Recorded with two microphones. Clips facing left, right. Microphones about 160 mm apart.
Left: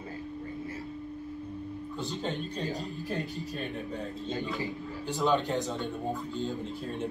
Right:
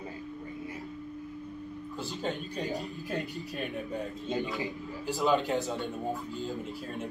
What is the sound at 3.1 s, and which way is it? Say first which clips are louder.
A man's voice: even; 20° right (ahead or behind).